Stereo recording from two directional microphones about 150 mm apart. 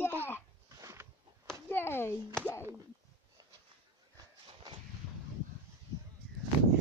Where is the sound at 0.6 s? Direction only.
20° right (ahead or behind).